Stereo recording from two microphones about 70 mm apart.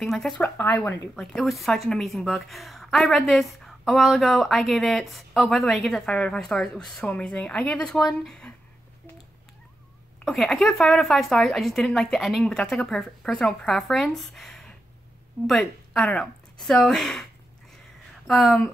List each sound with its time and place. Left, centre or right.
0.0 s a woman's voice: centre
0.4 s speech: left
1.1 s a woman's voice: centre
7.1 s speech: centre
10.2 s a woman's voice: centre